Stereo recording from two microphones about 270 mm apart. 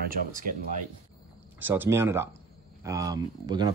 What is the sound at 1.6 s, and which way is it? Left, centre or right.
Speech, centre.